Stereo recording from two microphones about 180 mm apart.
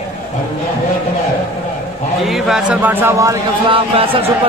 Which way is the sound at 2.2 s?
Centre (ahead or behind).